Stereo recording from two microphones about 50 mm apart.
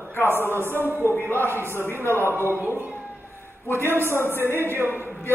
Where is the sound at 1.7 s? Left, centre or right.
Left.